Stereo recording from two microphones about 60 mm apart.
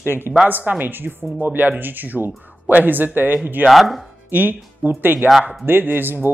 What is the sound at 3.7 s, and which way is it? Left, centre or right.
Chopping, centre.